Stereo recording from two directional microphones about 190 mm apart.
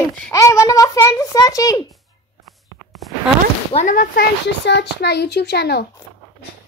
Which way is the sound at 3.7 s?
45° left (ahead or behind).